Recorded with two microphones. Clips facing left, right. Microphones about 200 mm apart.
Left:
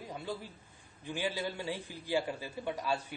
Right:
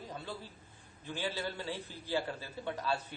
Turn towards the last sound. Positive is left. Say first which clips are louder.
# left 1 dB
turn(degrees=10)  # may be behind; listen again after turning